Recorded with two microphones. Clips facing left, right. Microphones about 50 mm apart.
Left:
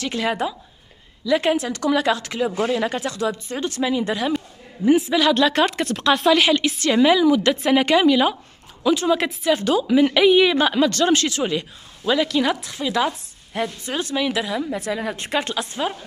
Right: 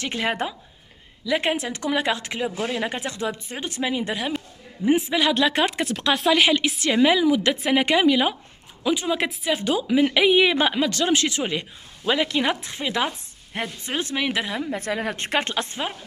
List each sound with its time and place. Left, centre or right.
0.0 s speech: right
1.2 s a woman's voice: right
14.9 s speech: right